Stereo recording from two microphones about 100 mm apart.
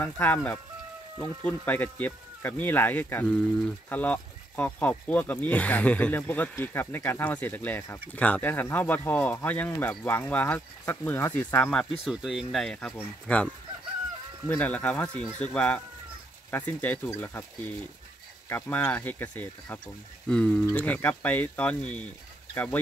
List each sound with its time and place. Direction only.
0.0 s speech: 15° left (ahead or behind)
12.0 s speech: 5° right (ahead or behind); by 13.5 s 15° left (ahead or behind)
14.5 s speech: 15° left (ahead or behind)